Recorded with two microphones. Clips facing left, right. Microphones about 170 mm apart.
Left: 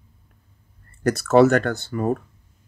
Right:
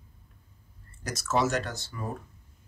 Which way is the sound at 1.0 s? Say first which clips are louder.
Left 13 dB; 60° left (ahead or behind).